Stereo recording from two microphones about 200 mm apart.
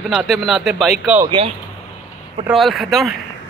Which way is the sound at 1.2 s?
25° right (ahead or behind).